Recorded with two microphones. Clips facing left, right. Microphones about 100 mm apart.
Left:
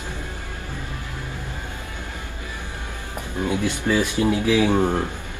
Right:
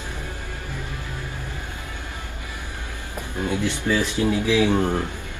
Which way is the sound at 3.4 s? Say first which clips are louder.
Left 1 dB; 15° left (ahead or behind).